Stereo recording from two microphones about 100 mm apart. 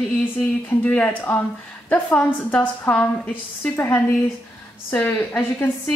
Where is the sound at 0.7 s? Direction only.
15° left (ahead or behind).